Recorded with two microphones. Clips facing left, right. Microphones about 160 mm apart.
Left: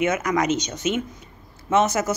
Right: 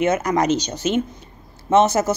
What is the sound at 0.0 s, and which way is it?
A woman's voice, 30° right (ahead or behind).